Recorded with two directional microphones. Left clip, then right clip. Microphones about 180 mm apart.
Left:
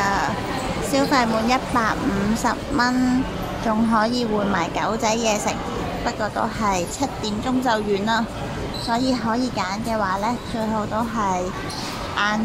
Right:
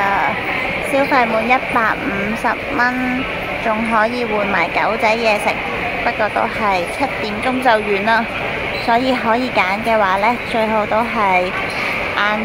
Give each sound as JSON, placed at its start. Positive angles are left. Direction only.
{"t": 0.0, "sound": "sheep", "side_deg": 5}
{"t": 0.9, "sound": "speech", "side_deg": 15}
{"t": 3.6, "sound": "speech", "side_deg": 20}